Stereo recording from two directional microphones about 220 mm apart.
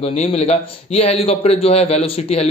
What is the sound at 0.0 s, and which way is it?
A man's voice, 30° left (ahead or behind).